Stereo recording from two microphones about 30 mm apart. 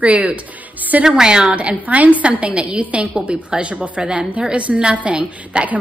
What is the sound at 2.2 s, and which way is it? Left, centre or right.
Speech, right.